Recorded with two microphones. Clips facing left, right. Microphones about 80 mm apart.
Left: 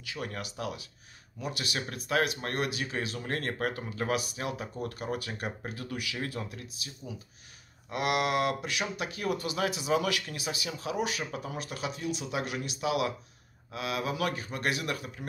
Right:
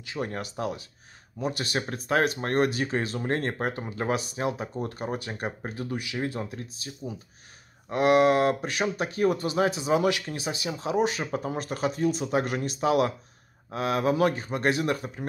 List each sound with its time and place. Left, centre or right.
0.0 s speech: right